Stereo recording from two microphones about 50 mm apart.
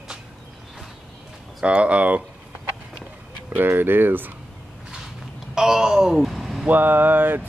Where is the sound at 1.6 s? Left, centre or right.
Right.